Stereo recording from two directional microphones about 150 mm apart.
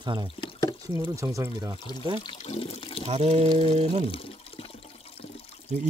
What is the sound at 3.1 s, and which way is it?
Speech, 45° right (ahead or behind).